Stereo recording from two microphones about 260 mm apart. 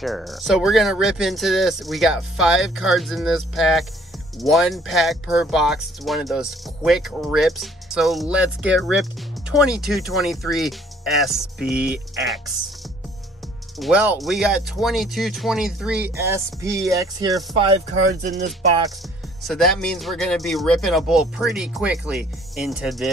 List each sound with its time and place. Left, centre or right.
0.0 s speech: centre
13.7 s speech: centre; by 18.5 s right
19.4 s speech: centre